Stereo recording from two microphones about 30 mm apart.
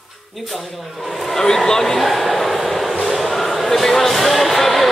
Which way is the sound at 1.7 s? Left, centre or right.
Centre.